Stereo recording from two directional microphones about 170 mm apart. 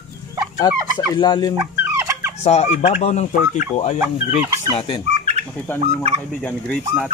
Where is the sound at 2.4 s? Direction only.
40° left (ahead or behind).